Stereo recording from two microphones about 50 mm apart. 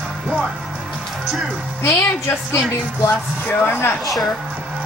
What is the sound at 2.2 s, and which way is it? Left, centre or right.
Speech, left.